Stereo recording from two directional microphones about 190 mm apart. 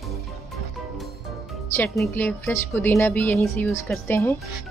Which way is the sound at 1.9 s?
10° left (ahead or behind).